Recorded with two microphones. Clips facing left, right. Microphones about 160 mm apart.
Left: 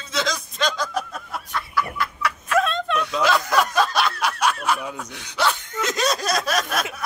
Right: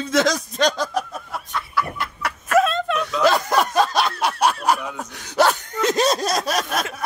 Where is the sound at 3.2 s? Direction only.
40° right (ahead or behind).